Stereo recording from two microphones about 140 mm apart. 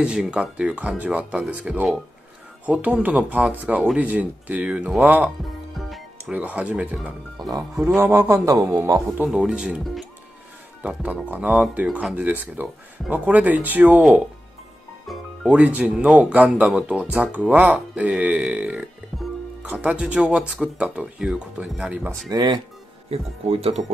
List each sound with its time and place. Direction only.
0.0 s speech: 5° right (ahead or behind)
5.8 s speech: centre (ahead or behind)
7.3 s speech: 25° right (ahead or behind)
9.2 s speech: 10° right (ahead or behind)
15.0 s speech: 5° right (ahead or behind)
22.3 s speech: 35° right (ahead or behind)
23.0 s speech: 45° right (ahead or behind)